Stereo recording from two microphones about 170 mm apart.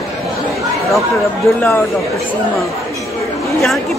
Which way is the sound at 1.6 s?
15° left (ahead or behind).